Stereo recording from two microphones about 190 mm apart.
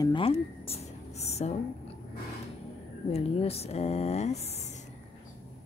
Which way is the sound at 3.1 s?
30° left (ahead or behind).